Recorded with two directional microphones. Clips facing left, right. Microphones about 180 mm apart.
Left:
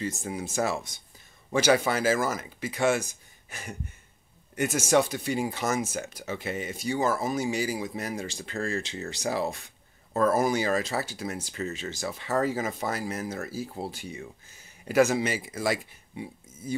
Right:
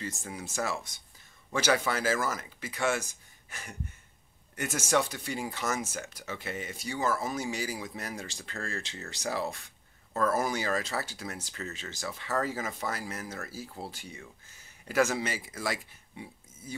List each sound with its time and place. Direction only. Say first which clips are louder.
0.0 s speech: left 6 dB; 20° left (ahead or behind)